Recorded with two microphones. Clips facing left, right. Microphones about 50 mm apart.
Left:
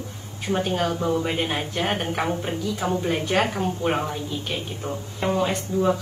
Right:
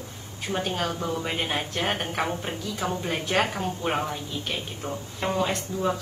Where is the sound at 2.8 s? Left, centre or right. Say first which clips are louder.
Left 3 dB; left.